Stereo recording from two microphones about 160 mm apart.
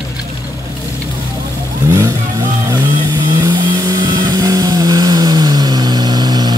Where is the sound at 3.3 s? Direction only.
25° right (ahead or behind).